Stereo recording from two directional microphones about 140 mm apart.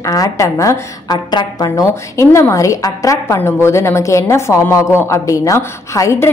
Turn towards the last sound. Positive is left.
turn(degrees=20)  # may be behind; listen again after turning